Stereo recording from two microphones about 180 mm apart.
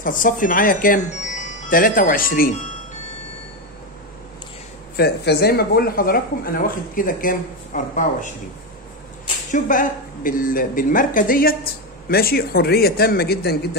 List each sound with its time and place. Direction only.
0.0 s speech: 50° left (ahead or behind)
4.9 s a woman's voice: 65° left (ahead or behind); by 8.3 s 45° left (ahead or behind)
9.5 s a woman's voice: 45° left (ahead or behind); by 13.7 s 60° left (ahead or behind)